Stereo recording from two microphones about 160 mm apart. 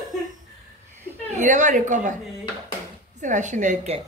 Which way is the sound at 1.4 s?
50° right (ahead or behind).